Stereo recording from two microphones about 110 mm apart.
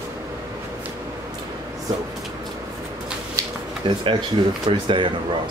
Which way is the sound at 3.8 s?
50° right (ahead or behind).